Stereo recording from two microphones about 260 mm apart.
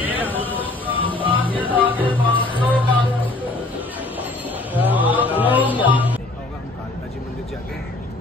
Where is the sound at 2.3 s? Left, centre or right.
Centre.